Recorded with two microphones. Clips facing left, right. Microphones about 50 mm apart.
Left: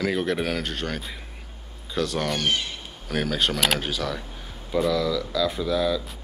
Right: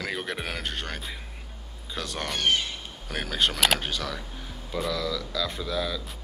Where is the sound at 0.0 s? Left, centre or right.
Centre.